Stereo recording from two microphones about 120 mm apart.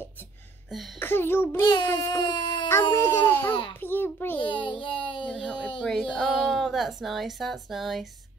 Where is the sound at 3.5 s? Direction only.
45° left (ahead or behind).